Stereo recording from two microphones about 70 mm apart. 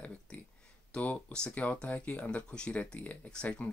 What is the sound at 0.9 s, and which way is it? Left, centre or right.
Speech, centre.